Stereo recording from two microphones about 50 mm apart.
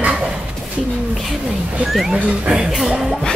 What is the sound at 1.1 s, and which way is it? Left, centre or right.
Speech, centre.